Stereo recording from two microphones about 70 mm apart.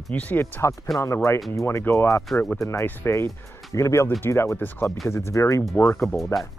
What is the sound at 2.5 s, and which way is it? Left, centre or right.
Speech, left.